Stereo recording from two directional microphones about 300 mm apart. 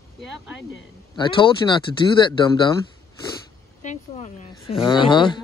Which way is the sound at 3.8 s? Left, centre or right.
Left.